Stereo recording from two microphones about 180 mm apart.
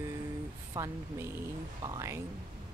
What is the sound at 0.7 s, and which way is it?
Speech, 15° right (ahead or behind).